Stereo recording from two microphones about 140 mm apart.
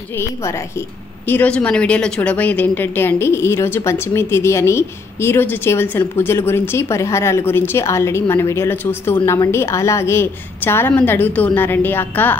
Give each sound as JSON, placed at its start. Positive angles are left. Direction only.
{"t": 0.2, "sound": "a woman's voice", "side_deg": 20}